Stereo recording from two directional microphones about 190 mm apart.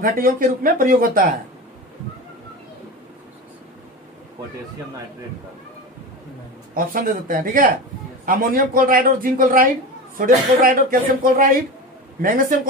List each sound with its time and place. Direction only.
0.0 s speech: 50° right (ahead or behind)
6.7 s speech: 45° right (ahead or behind)